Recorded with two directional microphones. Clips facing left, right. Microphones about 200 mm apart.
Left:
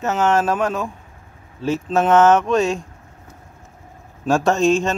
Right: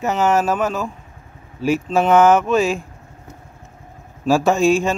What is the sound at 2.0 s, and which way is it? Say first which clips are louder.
Speech: even; 10° right (ahead or behind).